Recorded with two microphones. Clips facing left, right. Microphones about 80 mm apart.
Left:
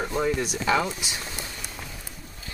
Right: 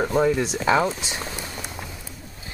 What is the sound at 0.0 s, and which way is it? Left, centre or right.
Speech, right.